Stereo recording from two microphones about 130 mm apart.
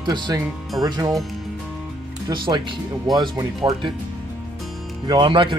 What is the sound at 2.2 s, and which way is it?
Speech, 35° right (ahead or behind).